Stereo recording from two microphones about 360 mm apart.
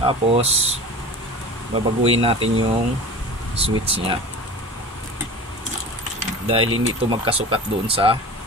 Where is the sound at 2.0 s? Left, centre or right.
Centre.